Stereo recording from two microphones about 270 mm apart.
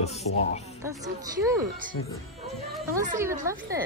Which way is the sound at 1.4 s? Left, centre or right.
Centre.